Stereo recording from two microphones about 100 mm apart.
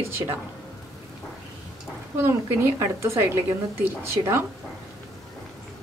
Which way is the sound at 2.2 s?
25° right (ahead or behind).